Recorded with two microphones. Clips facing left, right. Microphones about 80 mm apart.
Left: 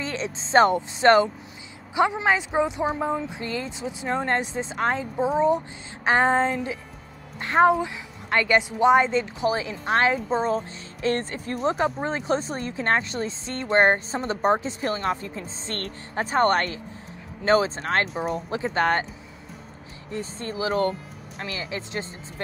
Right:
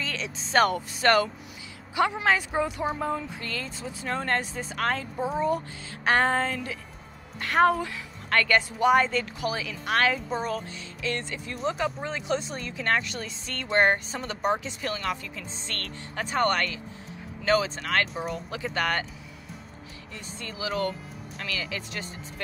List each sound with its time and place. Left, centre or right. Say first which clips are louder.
0.0 s a woman's voice: left 4 dB; left
11.0 s a woman's voice: left 7 dB; left
20.1 s speech: left 9 dB; left